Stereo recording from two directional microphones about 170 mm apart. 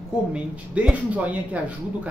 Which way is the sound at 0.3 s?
5° right (ahead or behind).